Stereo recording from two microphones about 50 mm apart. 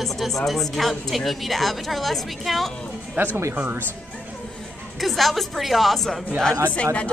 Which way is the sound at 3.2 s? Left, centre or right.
Right.